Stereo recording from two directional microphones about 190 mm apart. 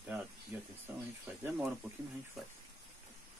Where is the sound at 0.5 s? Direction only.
10° right (ahead or behind).